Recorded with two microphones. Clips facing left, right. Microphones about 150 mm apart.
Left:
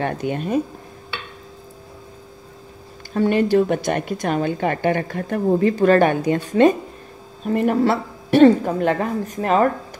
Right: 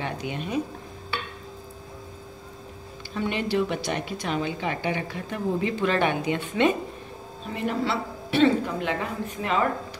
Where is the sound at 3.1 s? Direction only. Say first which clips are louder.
Left 9 dB; 45° left (ahead or behind).